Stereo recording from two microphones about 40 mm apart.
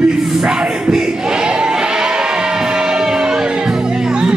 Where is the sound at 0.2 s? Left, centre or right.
Centre.